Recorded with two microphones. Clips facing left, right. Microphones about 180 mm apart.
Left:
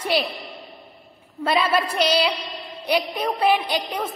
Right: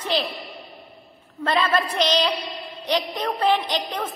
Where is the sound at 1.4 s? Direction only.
10° left (ahead or behind).